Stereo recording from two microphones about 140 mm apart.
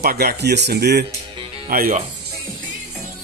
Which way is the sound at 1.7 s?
90° right.